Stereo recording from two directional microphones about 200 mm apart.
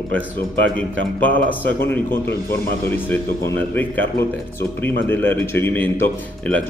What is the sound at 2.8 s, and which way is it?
Speech, 10° left (ahead or behind).